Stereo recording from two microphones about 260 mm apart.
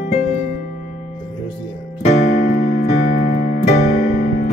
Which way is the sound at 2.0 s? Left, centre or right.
Left.